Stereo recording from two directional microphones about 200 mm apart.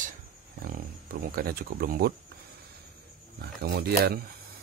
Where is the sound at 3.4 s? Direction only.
55° right (ahead or behind).